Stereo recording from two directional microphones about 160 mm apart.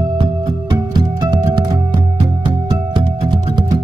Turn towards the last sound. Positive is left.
turn(degrees=-30)  # may be behind; listen again after turning